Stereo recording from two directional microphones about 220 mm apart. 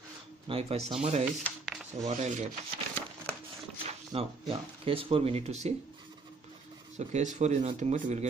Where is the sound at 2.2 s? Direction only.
35° right (ahead or behind).